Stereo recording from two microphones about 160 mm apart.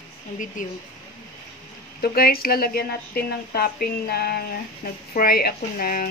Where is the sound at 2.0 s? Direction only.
70° left (ahead or behind).